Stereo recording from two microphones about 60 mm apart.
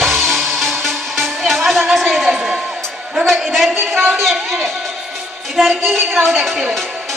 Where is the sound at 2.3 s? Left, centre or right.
Centre.